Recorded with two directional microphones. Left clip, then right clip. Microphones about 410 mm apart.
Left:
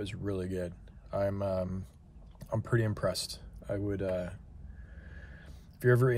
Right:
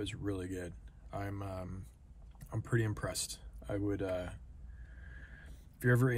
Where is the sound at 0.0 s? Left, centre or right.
Centre.